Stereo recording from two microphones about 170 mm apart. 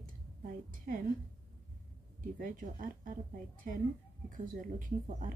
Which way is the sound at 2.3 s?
50° right (ahead or behind).